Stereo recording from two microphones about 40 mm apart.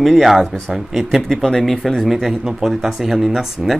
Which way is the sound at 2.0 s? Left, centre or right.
Centre.